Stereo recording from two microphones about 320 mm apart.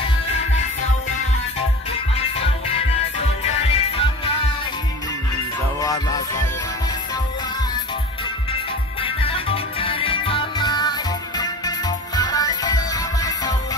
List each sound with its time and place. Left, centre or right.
1.9 s music: centre
5.8 s music: centre
9.0 s music: centre